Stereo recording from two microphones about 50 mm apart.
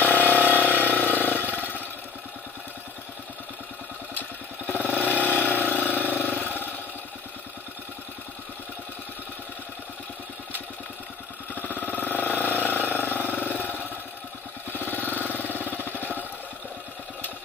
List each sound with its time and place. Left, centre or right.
0.0 s vehicle: left
4.1 s vehicle: left
11.5 s vehicle: left